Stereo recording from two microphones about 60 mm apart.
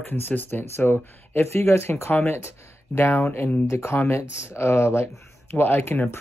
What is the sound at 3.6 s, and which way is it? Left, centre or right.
Speech, left.